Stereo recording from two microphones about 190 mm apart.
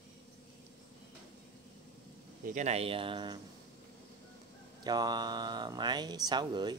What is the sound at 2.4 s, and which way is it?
Speech, 40° right (ahead or behind).